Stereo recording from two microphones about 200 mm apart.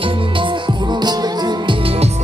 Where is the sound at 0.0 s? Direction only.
25° right (ahead or behind).